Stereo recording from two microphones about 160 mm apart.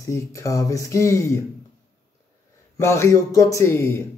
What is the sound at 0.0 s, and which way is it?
Speech, 20° left (ahead or behind).